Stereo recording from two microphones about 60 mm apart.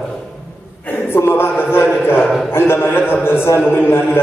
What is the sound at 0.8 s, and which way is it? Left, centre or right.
A man's voice, left.